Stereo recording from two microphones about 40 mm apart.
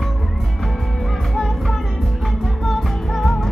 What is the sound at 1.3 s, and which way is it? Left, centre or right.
Music, centre.